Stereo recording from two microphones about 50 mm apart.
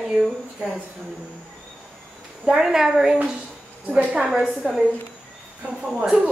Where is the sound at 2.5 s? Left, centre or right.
Centre.